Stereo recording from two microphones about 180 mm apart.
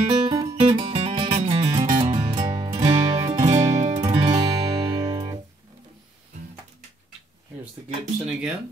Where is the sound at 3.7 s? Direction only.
40° right (ahead or behind).